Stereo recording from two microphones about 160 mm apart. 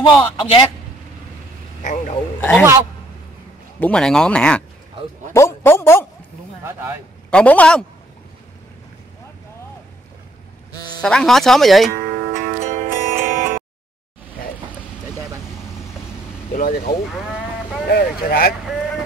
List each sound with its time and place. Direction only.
0.0 s a man's voice: 30° left (ahead or behind)
1.8 s a man's voice: 50° left (ahead or behind)
3.8 s speech: 5° left (ahead or behind)
6.6 s speech: 15° right (ahead or behind)
7.2 s a man's voice: 10° left (ahead or behind)
10.7 s a sound: 25° left (ahead or behind)
11.0 s speech: 5° left (ahead or behind)
12.1 s music: 50° right (ahead or behind)
16.5 s speech: 60° left (ahead or behind)
17.1 s sheep: centre (ahead or behind)
17.8 s speech: 75° left (ahead or behind)